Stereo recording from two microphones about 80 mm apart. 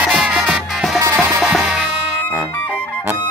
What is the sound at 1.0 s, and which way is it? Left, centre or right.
Music, right.